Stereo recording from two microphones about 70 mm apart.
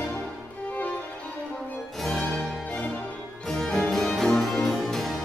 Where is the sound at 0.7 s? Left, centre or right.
Left.